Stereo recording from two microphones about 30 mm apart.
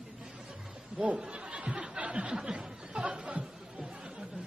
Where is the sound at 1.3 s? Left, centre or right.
Right.